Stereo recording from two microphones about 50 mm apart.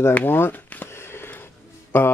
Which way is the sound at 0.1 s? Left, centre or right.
Left.